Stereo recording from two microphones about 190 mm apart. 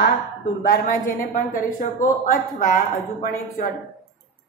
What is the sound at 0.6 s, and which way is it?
A woman's voice, 45° left (ahead or behind).